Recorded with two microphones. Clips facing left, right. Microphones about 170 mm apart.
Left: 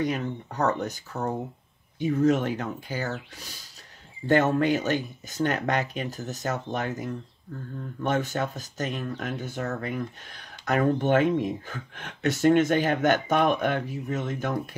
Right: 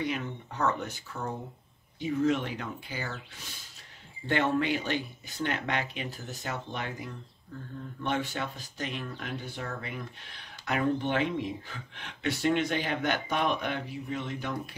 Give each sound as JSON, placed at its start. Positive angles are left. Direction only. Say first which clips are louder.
{"t": 0.0, "sound": "speech", "louder": "left 5 dB", "side_deg": 40}
{"t": 4.3, "sound": "speech", "louder": "left 6 dB", "side_deg": 45}